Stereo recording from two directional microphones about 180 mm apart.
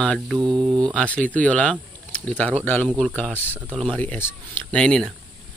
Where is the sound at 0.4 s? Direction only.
25° right (ahead or behind).